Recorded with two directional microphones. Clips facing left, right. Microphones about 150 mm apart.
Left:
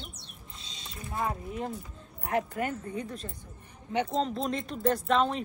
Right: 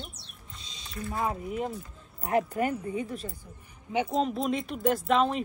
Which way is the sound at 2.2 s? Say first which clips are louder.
Right 3 dB; 25° right (ahead or behind).